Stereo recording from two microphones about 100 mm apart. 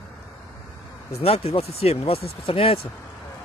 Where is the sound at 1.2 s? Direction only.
80° left.